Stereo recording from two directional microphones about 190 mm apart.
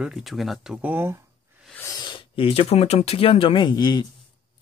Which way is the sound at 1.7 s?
15° left (ahead or behind).